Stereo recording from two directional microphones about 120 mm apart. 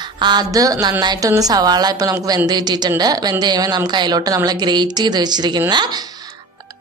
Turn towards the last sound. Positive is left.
turn(degrees=-35)  # may be behind; listen again after turning